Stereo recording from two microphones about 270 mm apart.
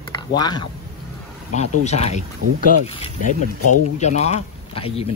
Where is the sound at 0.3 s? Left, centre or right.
Centre.